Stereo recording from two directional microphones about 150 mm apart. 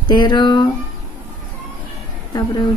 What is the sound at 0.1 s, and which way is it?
Speech, 30° left (ahead or behind).